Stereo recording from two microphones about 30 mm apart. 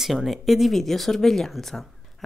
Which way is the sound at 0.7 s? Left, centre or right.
Centre.